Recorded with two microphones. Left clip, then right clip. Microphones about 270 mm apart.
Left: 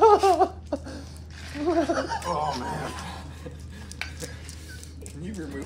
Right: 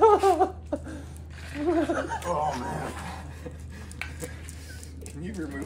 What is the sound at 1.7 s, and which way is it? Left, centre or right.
Speech, left.